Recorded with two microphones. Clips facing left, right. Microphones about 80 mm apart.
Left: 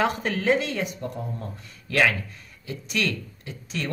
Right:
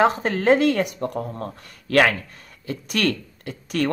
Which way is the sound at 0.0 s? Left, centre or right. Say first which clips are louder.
Right 5 dB; right.